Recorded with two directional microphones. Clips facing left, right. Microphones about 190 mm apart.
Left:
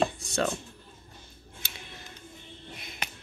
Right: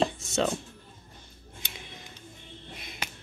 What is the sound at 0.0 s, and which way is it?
Music, 25° right (ahead or behind).